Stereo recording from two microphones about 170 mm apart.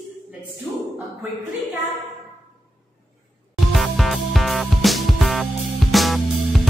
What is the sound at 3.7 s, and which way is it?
Music, centre (ahead or behind).